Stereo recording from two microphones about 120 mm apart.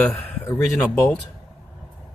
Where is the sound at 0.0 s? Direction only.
10° left (ahead or behind).